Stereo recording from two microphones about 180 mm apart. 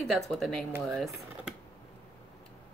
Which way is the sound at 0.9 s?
Centre (ahead or behind).